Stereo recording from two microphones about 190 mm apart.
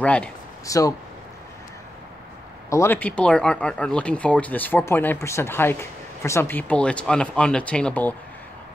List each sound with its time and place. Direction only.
0.0 s speech: 5° left (ahead or behind)
0.7 s speech: 20° left (ahead or behind)
2.7 s speech: 10° left (ahead or behind)